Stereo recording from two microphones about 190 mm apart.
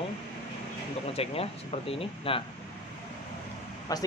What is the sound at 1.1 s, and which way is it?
Speech, 30° left (ahead or behind).